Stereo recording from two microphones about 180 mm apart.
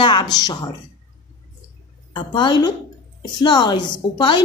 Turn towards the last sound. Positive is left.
turn(degrees=25)  # may be behind; listen again after turning